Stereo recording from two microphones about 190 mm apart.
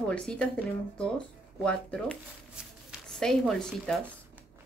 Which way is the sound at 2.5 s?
Centre (ahead or behind).